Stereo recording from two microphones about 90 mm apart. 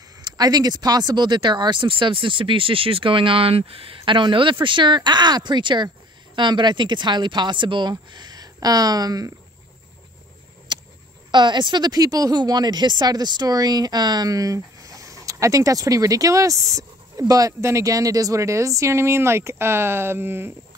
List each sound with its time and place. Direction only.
0.2 s speech: 45° right (ahead or behind)
10.7 s a sound: 60° right (ahead or behind)
11.3 s speech: 55° right (ahead or behind); by 20.5 s 25° right (ahead or behind)